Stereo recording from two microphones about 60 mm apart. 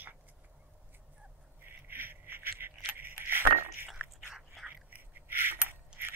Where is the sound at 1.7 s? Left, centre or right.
Right.